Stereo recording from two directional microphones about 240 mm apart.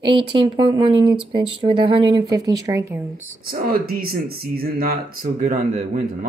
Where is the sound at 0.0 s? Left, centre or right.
Right.